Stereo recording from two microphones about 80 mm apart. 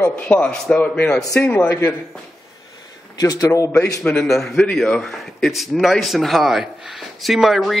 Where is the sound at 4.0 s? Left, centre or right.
Centre.